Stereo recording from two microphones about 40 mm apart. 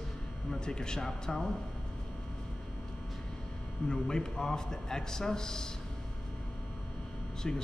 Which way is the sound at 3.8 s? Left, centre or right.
Centre.